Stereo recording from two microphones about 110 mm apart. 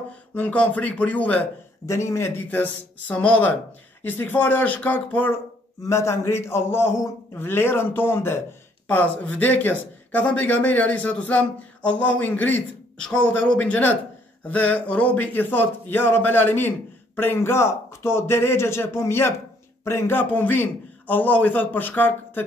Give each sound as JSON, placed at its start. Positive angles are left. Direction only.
{"t": 0.3, "sound": "speech", "side_deg": 15}
{"t": 1.9, "sound": "speech", "side_deg": 25}
{"t": 5.8, "sound": "a man's voice", "side_deg": 25}